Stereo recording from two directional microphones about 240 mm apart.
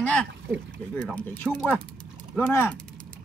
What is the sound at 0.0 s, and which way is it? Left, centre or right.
Speech, centre.